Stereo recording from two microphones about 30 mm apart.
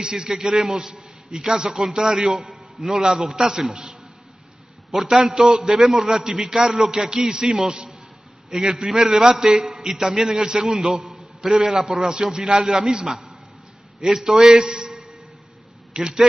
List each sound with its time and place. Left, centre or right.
0.0 s a man's voice: right
2.5 s a sound: centre
3.0 s a man's voice: right
5.0 s a man's voice: centre